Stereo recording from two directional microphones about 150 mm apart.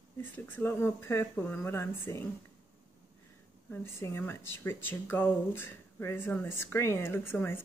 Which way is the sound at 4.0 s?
15° left (ahead or behind).